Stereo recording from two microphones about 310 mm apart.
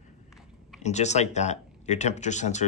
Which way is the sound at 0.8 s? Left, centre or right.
Left.